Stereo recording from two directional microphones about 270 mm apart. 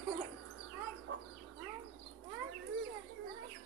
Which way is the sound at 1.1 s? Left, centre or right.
Right.